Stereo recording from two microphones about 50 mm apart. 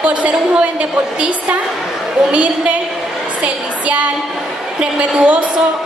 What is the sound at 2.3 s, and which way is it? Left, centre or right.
Speech, right.